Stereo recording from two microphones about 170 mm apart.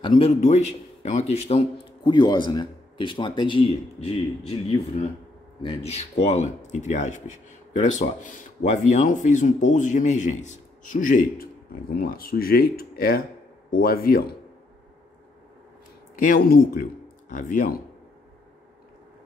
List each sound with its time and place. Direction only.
0.0 s a man's voice: 35° left (ahead or behind); by 14.3 s 65° left (ahead or behind)
16.2 s speech: 60° left (ahead or behind)